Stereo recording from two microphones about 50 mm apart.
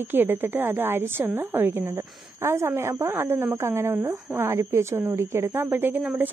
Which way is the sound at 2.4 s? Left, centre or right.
Right.